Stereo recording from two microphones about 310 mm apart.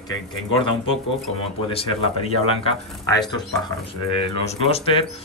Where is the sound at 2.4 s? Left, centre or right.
Centre.